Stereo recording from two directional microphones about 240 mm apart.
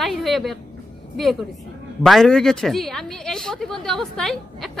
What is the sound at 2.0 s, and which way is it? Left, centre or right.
A woman's voice, centre.